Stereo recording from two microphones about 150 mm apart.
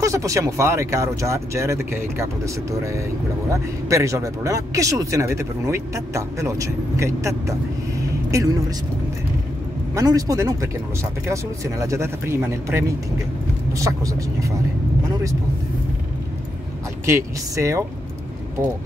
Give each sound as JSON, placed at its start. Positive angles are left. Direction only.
{"t": 0.0, "sound": "speech", "side_deg": -20}
{"t": 9.9, "sound": "speech", "side_deg": -25}
{"t": 17.0, "sound": "speech", "side_deg": -20}